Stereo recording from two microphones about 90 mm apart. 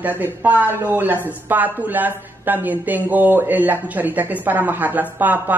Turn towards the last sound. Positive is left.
turn(degrees=-20)  # may be behind; listen again after turning